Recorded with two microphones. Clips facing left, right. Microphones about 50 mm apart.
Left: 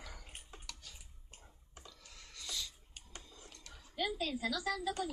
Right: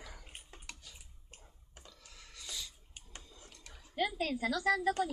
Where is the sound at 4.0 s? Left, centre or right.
Right.